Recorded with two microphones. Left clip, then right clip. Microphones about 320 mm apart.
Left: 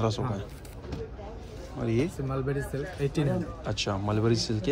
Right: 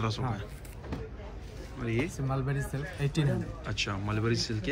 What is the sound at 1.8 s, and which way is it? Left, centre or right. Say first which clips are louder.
Speech: left 4 dB; centre.